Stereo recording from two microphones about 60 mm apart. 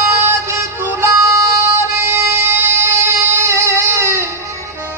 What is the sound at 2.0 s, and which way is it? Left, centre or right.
Music, right.